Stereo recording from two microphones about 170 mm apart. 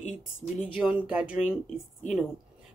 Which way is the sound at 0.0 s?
45° left (ahead or behind).